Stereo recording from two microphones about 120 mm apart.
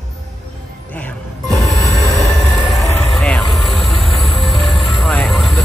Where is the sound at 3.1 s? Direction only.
5° left (ahead or behind).